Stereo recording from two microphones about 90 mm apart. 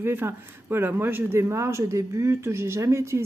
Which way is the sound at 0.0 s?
25° right (ahead or behind).